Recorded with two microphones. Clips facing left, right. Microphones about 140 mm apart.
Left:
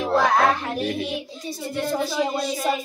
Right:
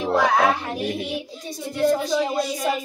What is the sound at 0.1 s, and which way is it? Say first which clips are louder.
Music: even; 10° right (ahead or behind).